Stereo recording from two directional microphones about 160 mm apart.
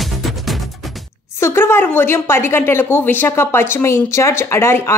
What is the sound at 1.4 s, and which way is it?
A woman's voice, 15° left (ahead or behind).